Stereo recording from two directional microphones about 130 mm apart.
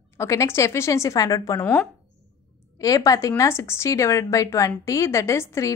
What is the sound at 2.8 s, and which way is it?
A woman's voice, 25° left (ahead or behind).